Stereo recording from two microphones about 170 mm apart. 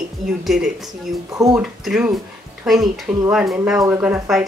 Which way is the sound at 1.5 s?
5° right (ahead or behind).